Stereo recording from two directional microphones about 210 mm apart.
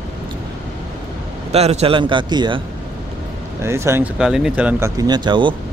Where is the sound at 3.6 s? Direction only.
10° right (ahead or behind).